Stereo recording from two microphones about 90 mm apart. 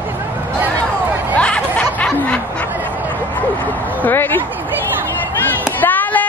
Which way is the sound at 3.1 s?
20° left (ahead or behind).